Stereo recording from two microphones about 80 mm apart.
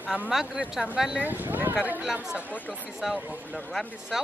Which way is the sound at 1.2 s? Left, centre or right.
Right.